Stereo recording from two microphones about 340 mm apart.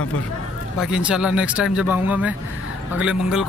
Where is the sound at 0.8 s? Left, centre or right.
Centre.